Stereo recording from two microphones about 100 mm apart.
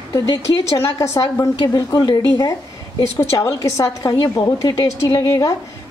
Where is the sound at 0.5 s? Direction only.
30° left (ahead or behind).